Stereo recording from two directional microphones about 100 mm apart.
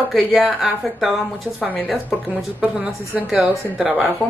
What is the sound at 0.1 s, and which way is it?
A woman's voice, centre (ahead or behind).